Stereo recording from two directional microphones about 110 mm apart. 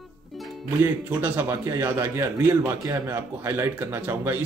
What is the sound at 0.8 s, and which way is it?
A man's voice, 20° right (ahead or behind).